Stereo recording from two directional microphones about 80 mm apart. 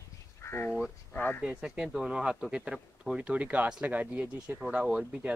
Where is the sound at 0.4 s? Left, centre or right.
Left.